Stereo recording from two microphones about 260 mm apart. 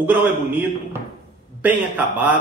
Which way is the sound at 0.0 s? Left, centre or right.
Centre.